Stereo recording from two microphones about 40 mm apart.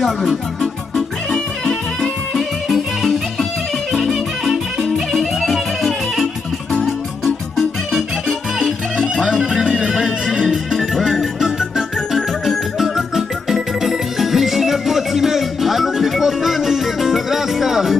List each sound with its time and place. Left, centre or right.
0.0 s music: centre
7.2 s music: centre